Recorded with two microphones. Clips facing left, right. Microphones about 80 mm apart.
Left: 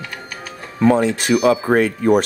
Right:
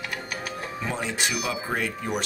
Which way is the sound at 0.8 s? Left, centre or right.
Left.